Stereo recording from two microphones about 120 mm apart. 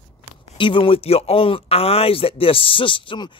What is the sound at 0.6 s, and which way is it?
Speech, 45° left (ahead or behind).